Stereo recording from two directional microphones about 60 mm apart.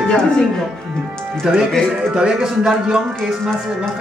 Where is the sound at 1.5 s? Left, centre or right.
Centre.